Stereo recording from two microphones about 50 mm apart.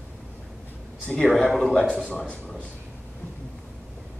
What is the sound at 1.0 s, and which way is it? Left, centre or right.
Speech, centre.